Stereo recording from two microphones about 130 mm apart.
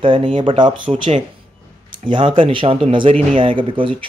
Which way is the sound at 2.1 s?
40° right (ahead or behind).